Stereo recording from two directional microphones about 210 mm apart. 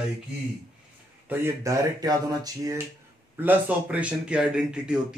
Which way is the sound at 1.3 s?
15° right (ahead or behind).